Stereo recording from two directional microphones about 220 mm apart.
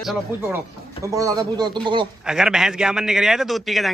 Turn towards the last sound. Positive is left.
turn(degrees=0)  # may be behind; listen again after turning